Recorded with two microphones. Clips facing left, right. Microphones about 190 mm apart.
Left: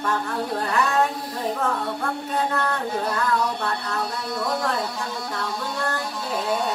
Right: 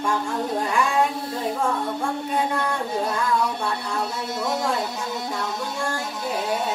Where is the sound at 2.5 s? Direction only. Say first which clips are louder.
Even; 10° right (ahead or behind).